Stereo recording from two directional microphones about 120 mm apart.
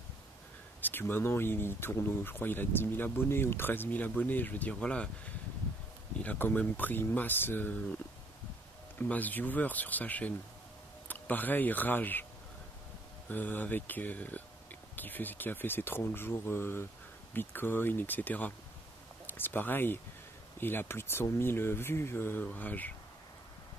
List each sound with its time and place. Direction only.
0.7 s speech: 15° left (ahead or behind)
6.1 s speech: 15° left (ahead or behind)
8.9 s speech: 15° left (ahead or behind)
13.3 s speech: 15° left (ahead or behind)